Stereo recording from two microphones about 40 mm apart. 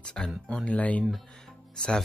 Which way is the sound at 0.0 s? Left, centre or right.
Centre.